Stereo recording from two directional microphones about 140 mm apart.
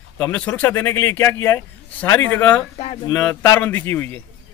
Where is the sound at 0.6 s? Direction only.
15° left (ahead or behind).